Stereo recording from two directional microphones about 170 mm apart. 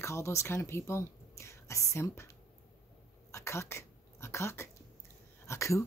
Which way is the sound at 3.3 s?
15° left (ahead or behind).